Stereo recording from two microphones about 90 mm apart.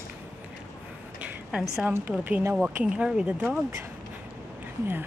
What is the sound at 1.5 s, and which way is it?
Speech, 10° right (ahead or behind).